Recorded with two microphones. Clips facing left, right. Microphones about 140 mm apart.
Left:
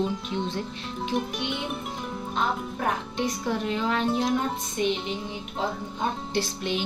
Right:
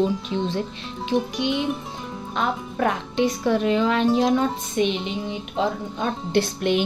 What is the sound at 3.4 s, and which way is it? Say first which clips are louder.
A woman's voice: right 8 dB; 90° right.